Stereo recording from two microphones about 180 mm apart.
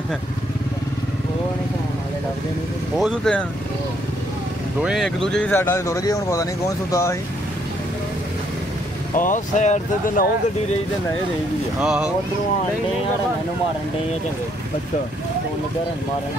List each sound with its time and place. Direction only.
3.0 s speech: centre (ahead or behind)
4.8 s speech: centre (ahead or behind); by 7.2 s 15° left (ahead or behind)
9.1 s speech: 45° left (ahead or behind)
11.8 s speech: 5° right (ahead or behind)